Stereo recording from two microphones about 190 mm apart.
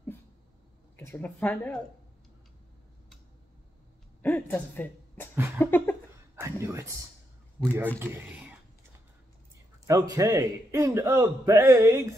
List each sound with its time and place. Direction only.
0.9 s speech: 10° left (ahead or behind)
4.2 s speech: 10° left (ahead or behind)
5.6 s a sound: 10° left (ahead or behind)
6.4 s a man's voice: 15° right (ahead or behind)
8.0 s speech: 10° right (ahead or behind)
9.8 s a man's voice: 20° right (ahead or behind)